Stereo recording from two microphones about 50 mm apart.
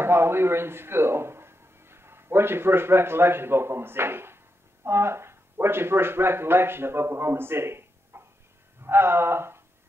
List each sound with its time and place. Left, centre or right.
0.0 s speech: right
8.8 s gasp: right